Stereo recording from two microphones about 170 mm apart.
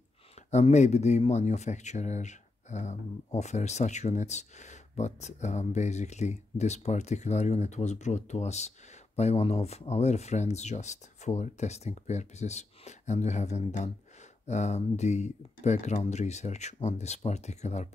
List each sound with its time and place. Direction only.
0.5 s speech: 40° left (ahead or behind)